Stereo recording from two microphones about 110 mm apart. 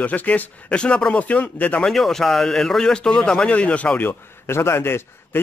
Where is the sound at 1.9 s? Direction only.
5° left (ahead or behind).